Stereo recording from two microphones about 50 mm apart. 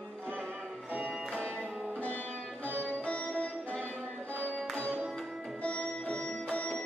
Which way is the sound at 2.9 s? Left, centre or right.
Left.